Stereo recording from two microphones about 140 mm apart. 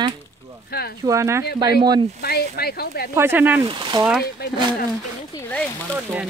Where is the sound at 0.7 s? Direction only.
90° left.